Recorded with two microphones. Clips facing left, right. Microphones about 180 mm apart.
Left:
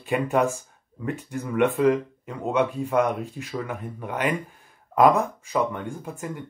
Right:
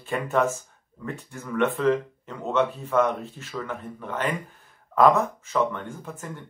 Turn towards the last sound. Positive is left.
turn(degrees=15)  # may be behind; listen again after turning